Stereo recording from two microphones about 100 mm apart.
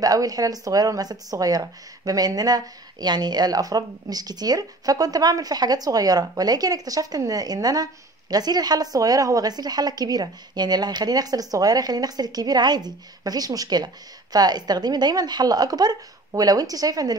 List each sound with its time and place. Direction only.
0.0 s a woman's voice: 40° right (ahead or behind)